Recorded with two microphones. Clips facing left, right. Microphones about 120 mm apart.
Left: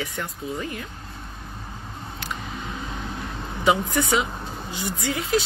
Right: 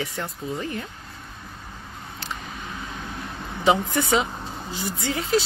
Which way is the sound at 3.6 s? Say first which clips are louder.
Even; 30° right (ahead or behind).